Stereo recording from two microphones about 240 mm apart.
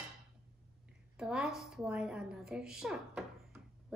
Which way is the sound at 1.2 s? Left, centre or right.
Centre.